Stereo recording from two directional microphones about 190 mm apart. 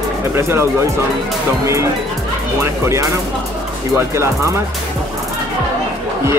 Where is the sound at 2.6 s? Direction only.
15° right (ahead or behind).